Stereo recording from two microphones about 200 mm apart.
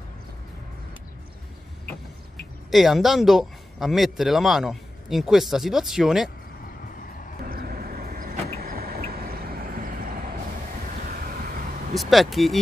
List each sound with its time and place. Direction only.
2.7 s speech: centre (ahead or behind)
7.4 s vehicle: 45° right (ahead or behind)
11.9 s speech: centre (ahead or behind)